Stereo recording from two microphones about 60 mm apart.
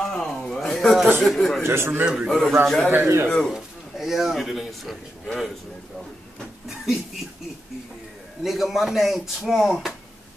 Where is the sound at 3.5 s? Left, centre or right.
Centre.